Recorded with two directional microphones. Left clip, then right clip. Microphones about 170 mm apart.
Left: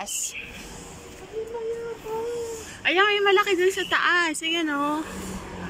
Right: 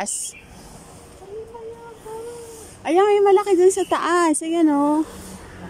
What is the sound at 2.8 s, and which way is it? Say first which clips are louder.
Speech: right 4 dB; 35° right (ahead or behind).